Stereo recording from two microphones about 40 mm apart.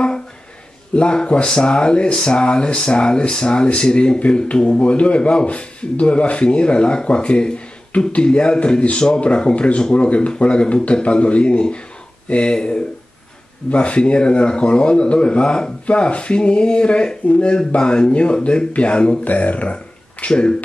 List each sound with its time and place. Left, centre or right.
0.9 s speech: left
19.2 s speech: left